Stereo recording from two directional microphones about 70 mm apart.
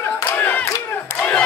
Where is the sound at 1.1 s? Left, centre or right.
Left.